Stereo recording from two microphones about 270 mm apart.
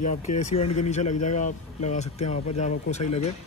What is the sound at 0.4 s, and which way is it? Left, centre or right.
Speech, left.